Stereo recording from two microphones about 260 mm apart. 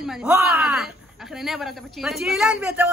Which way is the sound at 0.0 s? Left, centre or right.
Centre.